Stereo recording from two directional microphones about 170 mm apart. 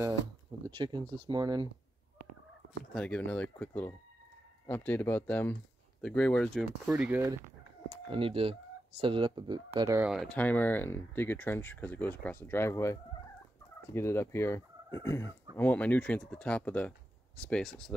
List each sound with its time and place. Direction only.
0.7 s speech: 25° right (ahead or behind)
2.9 s speech: 5° left (ahead or behind)
7.2 s speech: 15° right (ahead or behind)
7.9 s speech: 30° right (ahead or behind)
9.9 s speech: 5° right (ahead or behind)